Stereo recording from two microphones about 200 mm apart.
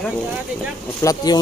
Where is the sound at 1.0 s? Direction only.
20° left (ahead or behind).